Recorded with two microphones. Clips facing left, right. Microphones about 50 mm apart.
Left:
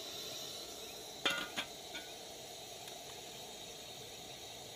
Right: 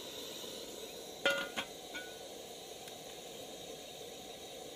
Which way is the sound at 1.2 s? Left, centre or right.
Centre.